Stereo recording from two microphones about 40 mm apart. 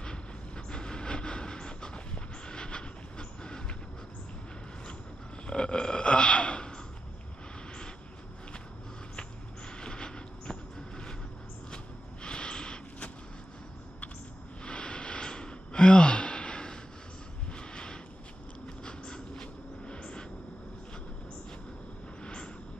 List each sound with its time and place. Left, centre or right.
0.0 s train: left
5.5 s gasp: left
9.8 s vehicle: left
11.7 s a sound: left
14.6 s gasp: left
17.6 s a sound: left
18.9 s vehicle: centre
22.2 s vehicle: left